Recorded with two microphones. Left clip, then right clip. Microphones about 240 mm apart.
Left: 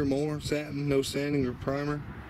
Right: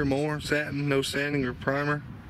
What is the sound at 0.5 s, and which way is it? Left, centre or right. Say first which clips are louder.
Speech: right 2 dB; right.